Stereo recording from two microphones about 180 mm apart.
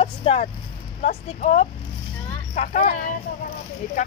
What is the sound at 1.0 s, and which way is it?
Speech, 45° left (ahead or behind).